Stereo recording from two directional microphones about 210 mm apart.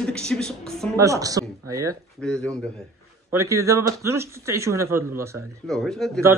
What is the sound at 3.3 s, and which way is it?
Speech, 15° right (ahead or behind).